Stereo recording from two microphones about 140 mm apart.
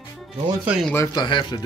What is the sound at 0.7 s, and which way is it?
Speech, centre (ahead or behind).